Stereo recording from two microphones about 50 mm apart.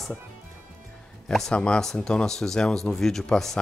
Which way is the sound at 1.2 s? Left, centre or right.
Centre.